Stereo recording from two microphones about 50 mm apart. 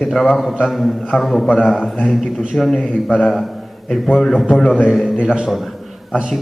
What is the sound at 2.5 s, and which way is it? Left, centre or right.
Speech, centre.